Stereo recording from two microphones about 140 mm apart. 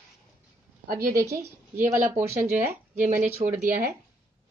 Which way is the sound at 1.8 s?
65° right (ahead or behind).